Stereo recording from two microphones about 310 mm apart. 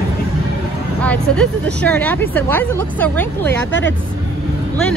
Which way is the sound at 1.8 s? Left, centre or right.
Centre.